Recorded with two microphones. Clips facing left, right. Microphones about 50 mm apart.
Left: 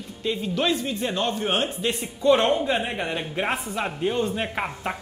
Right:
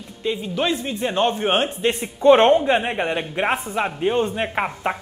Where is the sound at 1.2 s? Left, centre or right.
Right.